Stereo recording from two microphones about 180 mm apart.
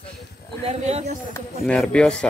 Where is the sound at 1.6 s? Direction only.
5° left (ahead or behind).